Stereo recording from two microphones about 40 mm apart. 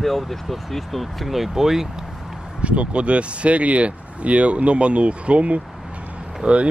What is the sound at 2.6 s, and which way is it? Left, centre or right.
Speech, right.